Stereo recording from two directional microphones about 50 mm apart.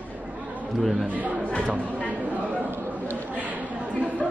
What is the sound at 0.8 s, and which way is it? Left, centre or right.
Speech, centre.